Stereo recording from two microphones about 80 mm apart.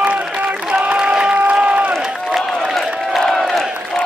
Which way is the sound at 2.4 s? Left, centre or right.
Centre.